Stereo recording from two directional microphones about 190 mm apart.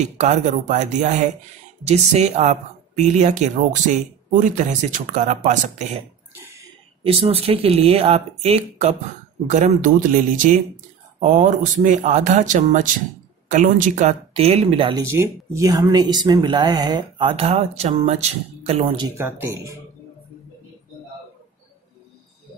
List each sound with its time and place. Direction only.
0.0 s speech: 40° right (ahead or behind)
6.3 s a sound: 15° right (ahead or behind)
7.0 s speech: 30° right (ahead or behind)
19.1 s speech: 15° right (ahead or behind)